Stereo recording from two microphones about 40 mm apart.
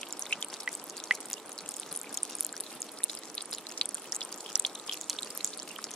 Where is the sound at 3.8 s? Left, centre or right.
Left.